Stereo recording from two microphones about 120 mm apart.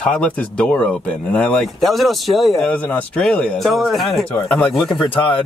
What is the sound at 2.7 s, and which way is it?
Speech, 15° left (ahead or behind).